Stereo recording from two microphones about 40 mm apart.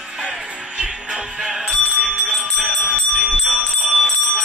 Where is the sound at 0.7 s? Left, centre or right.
Centre.